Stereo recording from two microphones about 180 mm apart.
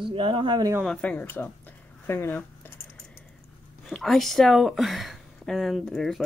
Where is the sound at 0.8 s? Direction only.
10° left (ahead or behind).